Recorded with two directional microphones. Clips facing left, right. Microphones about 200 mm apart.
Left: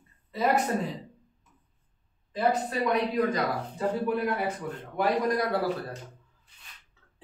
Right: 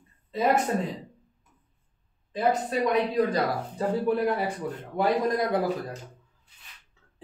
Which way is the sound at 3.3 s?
35° right (ahead or behind).